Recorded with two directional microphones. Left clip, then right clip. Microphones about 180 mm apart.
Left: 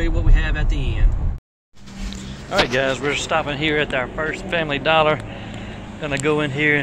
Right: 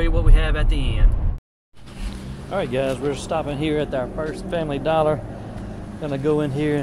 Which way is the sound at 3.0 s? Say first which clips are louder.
Left 4 dB; 35° right (ahead or behind).